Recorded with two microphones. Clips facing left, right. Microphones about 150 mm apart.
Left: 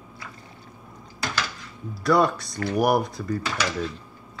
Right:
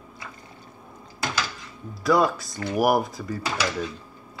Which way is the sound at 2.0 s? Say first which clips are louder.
Even; centre (ahead or behind).